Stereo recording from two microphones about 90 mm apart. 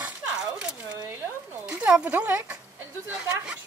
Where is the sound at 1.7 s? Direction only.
20° right (ahead or behind).